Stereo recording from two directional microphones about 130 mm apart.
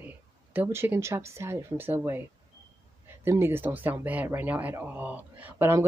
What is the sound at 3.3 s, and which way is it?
Speech, 20° right (ahead or behind).